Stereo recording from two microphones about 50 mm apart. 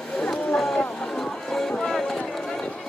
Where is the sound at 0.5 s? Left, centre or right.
Centre.